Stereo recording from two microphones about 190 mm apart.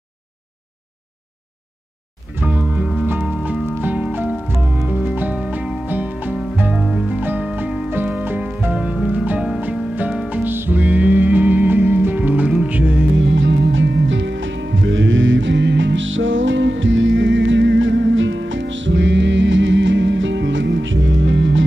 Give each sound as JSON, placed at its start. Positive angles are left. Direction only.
{"t": 2.3, "sound": "music", "side_deg": -5}
{"t": 13.2, "sound": "music", "side_deg": -75}